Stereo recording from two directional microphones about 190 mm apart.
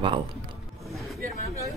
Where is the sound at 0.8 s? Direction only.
Centre (ahead or behind).